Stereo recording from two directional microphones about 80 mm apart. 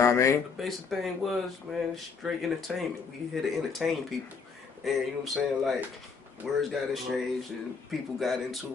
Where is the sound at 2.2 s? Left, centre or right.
Centre.